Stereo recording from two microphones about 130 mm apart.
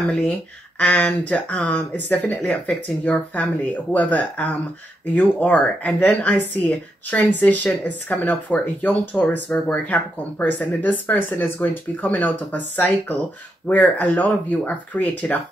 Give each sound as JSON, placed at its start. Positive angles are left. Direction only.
{"t": 0.1, "sound": "speech", "side_deg": 10}